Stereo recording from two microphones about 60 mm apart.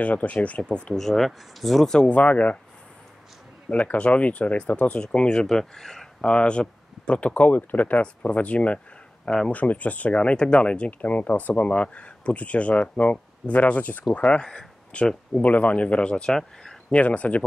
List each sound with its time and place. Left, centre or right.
0.0 s speech: left
0.9 s speech: centre
1.9 s speech: centre
3.7 s speech: left
9.5 s speech: left
14.2 s speech: centre
17.0 s speech: left